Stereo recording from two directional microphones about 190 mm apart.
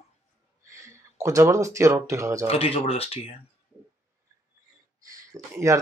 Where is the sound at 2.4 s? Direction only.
30° left (ahead or behind).